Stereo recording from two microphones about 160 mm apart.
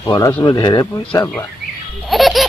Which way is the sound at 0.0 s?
25° left (ahead or behind).